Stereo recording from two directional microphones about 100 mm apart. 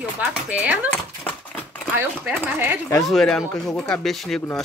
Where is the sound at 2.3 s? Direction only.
20° right (ahead or behind).